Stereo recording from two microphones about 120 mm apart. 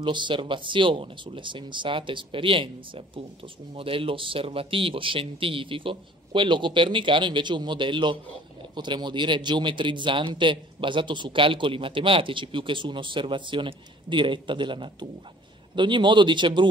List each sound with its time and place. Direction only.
0.0 s speech: 40° right (ahead or behind)